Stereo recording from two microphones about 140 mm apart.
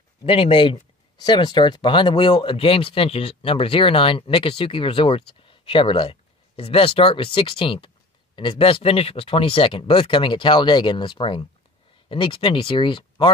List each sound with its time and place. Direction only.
0.2 s speech: 40° left (ahead or behind)